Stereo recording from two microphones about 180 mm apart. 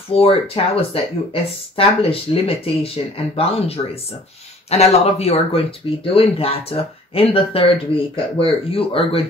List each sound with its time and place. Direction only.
0.1 s speech: 30° left (ahead or behind)